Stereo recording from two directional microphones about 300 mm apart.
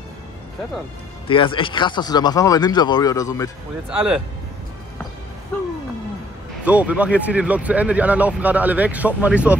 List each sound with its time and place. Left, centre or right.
1.2 s speech: centre
3.9 s speech: centre
6.6 s speech: centre